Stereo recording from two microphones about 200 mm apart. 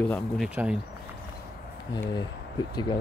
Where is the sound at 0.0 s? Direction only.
5° left (ahead or behind).